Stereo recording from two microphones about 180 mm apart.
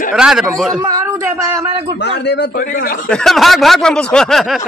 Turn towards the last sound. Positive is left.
turn(degrees=0)  # may be behind; listen again after turning